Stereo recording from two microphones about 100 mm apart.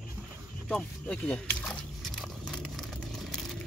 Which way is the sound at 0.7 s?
10° left (ahead or behind).